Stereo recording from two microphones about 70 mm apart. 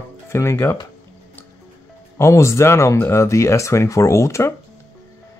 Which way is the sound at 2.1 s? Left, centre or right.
Left.